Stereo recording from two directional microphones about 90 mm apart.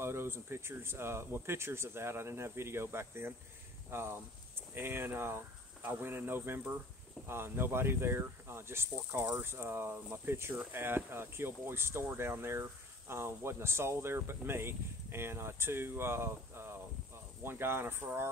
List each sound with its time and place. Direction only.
0.0 s speech: 30° right (ahead or behind)